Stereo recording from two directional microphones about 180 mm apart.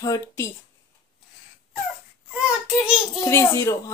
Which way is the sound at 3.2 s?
15° left (ahead or behind).